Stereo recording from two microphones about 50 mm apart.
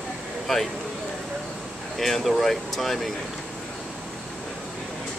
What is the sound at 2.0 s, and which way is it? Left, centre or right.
Speech, centre.